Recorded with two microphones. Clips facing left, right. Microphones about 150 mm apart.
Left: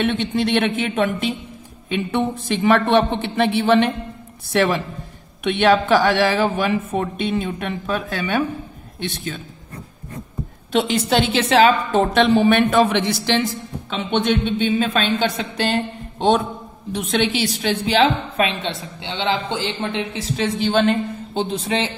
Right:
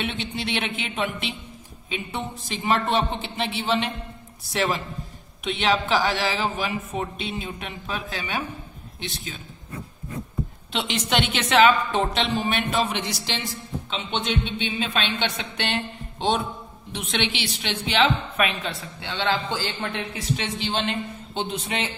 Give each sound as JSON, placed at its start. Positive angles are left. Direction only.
{"t": 0.0, "sound": "a woman's voice", "side_deg": 50}
{"t": 1.9, "sound": "a woman's voice", "side_deg": 60}
{"t": 10.7, "sound": "a woman's voice", "side_deg": 40}
{"t": 20.3, "sound": "a man's voice", "side_deg": 45}